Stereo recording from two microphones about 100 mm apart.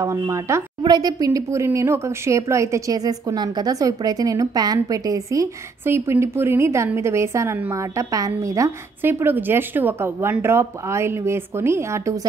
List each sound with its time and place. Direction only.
0.0 s speech: 30° right (ahead or behind)
0.8 s speech: 40° right (ahead or behind)
9.0 s speech: 20° right (ahead or behind)